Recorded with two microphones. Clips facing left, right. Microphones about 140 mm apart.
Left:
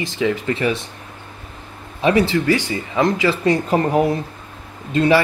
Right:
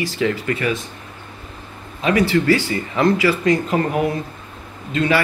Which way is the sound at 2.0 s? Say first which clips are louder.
Even; 25° left (ahead or behind).